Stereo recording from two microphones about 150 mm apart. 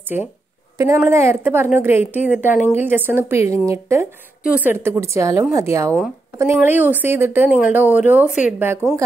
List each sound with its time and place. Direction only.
0.7 s a woman's voice: 15° right (ahead or behind)
2.5 s speech: 55° left (ahead or behind)
2.8 s a woman's voice: 15° right (ahead or behind)